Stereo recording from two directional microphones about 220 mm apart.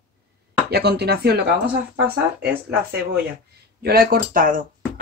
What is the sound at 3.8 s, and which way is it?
Speech, 45° right (ahead or behind).